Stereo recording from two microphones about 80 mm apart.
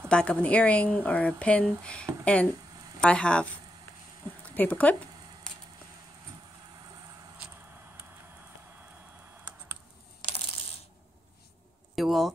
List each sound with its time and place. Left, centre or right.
0.1 s speech: centre
4.6 s speech: left
10.2 s coin: left
11.9 s a sound: centre